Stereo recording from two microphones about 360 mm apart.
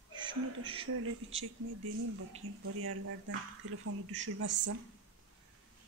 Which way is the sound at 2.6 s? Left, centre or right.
Right.